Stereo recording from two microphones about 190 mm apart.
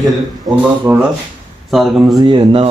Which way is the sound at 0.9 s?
15° right (ahead or behind).